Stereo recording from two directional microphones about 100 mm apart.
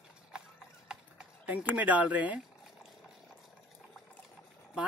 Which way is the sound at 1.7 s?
15° right (ahead or behind).